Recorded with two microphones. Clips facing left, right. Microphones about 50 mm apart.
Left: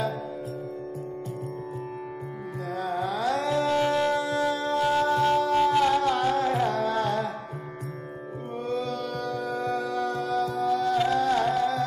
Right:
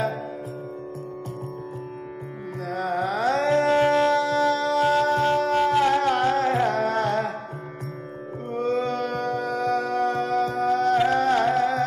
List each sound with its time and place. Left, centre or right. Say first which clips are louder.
2.7 s music: right 4 dB; right
4.1 s music: right 4 dB; right
4.8 s music: right 1 dB; right
8.5 s music: right 6 dB; right